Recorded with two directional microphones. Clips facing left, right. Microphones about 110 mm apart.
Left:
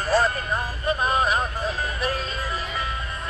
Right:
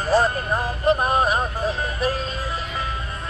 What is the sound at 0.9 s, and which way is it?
Music, 45° right (ahead or behind).